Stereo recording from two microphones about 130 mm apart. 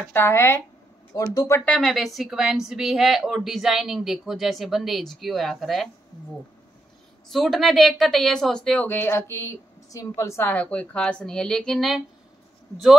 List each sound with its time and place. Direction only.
0.1 s speech: 20° left (ahead or behind)
1.6 s a woman's voice: 5° left (ahead or behind)
7.2 s a woman's voice: centre (ahead or behind)